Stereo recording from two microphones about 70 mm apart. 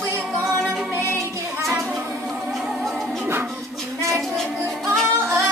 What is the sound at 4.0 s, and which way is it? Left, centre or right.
Music, right.